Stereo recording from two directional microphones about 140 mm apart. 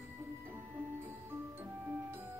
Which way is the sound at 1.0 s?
15° right (ahead or behind).